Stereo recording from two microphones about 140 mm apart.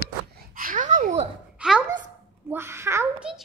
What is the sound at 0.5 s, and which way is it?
Babbling, 80° right.